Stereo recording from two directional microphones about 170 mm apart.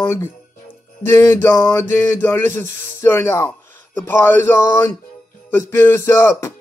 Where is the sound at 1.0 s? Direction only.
15° left (ahead or behind).